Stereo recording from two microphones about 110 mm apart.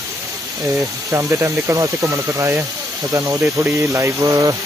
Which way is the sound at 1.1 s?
25° right (ahead or behind).